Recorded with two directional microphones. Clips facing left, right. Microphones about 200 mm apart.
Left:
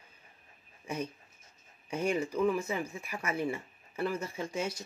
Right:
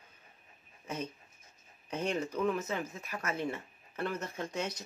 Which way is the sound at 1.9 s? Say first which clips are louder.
Left 3 dB; 10° left (ahead or behind).